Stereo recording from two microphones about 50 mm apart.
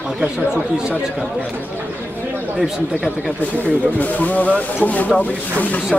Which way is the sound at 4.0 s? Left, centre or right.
Left.